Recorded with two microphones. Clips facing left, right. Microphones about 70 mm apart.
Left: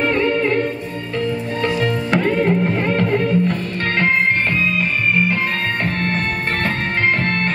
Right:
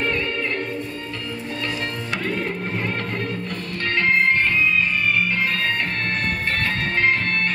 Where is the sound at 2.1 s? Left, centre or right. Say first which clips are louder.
Left 10 dB; left.